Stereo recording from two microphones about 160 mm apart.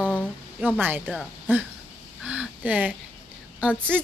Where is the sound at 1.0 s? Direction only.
5° left (ahead or behind).